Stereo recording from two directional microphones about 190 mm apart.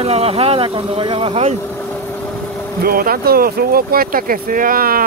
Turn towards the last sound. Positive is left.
turn(degrees=-50)  # may be behind; listen again after turning